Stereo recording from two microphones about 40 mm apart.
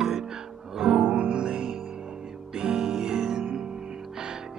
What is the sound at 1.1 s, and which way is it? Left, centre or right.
Music, right.